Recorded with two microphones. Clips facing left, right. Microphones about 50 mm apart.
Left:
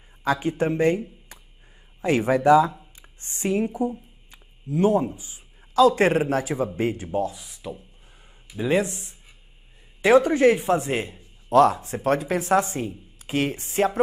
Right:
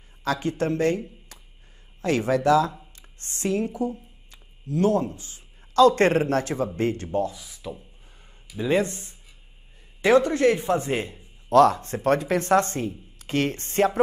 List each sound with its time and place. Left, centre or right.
0.2 s speech: centre
7.3 s speech: left
8.5 s a man's voice: centre